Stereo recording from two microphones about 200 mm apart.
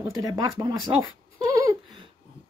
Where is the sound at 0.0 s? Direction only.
15° right (ahead or behind).